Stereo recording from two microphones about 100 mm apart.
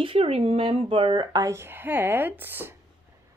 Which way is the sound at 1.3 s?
35° right (ahead or behind).